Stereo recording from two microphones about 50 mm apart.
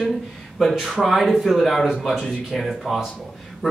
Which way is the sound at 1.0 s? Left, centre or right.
Centre.